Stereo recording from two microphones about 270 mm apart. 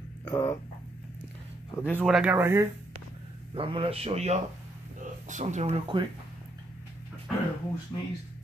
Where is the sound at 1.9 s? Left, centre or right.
Centre; by 6.0 s right.